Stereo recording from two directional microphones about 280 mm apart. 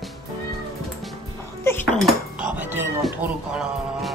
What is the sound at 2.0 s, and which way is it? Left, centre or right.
Speech, centre.